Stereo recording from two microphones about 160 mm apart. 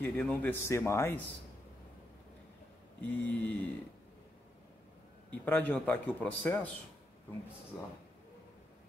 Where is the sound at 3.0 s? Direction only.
10° left (ahead or behind).